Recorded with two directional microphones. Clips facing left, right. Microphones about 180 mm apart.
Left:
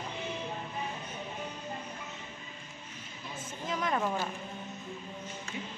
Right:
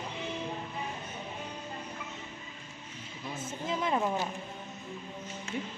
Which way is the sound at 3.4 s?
25° right (ahead or behind).